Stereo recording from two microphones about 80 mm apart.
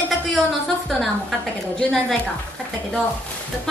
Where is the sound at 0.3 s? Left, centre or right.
Centre.